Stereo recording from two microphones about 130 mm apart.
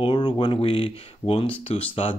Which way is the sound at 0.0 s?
40° left (ahead or behind).